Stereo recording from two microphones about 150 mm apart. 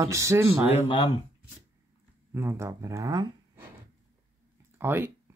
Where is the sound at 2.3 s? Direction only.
15° right (ahead or behind).